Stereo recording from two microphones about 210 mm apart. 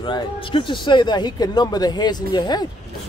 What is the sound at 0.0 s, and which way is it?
Speech, 25° left (ahead or behind).